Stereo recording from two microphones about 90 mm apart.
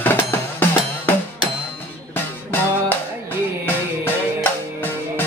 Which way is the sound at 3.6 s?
25° left (ahead or behind).